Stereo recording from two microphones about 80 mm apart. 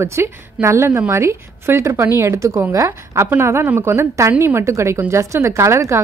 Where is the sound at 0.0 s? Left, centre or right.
Right.